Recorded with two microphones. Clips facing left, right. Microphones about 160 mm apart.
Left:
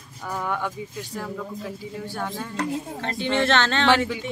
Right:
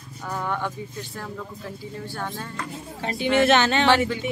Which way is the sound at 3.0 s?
10° right (ahead or behind).